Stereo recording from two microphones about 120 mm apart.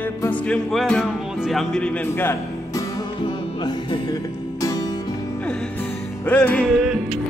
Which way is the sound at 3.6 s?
30° left (ahead or behind).